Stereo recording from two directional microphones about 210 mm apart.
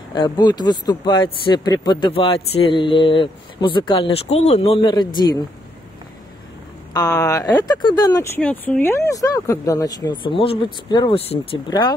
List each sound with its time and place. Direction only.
0.1 s speech: 20° left (ahead or behind)
6.9 s speech: 15° left (ahead or behind)
8.4 s speech: 5° left (ahead or behind)